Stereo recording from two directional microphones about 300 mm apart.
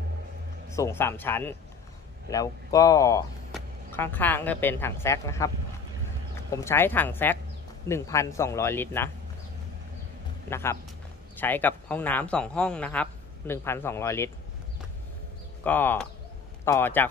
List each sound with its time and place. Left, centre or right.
0.7 s a woman's voice: centre
6.5 s speech: centre
10.5 s speech: centre
15.6 s speech: centre